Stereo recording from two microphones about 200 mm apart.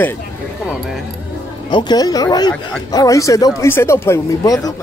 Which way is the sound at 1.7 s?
20° left (ahead or behind).